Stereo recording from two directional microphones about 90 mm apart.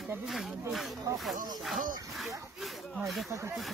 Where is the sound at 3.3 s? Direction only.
35° right (ahead or behind).